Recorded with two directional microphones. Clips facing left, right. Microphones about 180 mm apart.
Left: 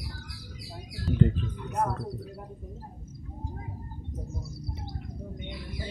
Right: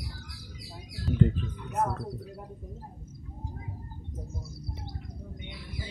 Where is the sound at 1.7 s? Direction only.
5° right (ahead or behind).